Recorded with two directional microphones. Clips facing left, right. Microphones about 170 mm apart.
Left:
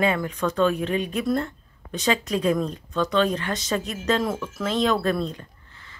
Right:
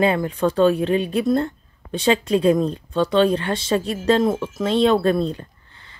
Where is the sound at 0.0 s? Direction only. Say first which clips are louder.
Right 4 dB; 30° right (ahead or behind).